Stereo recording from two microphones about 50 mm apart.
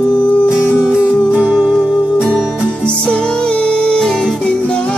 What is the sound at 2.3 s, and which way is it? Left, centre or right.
Music, centre.